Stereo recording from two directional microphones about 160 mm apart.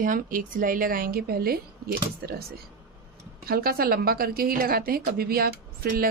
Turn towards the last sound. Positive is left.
turn(degrees=-65)  # may be behind; listen again after turning